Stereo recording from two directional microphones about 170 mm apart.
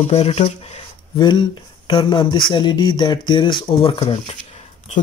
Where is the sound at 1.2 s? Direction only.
25° left (ahead or behind).